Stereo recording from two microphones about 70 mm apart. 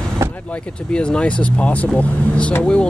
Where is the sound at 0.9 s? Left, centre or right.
Centre.